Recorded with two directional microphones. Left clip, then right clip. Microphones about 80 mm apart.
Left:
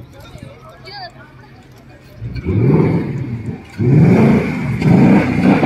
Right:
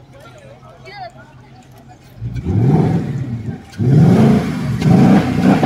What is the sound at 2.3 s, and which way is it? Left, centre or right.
Vehicle, right.